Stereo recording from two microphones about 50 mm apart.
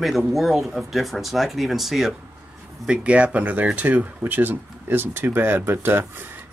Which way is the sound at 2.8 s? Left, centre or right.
Right.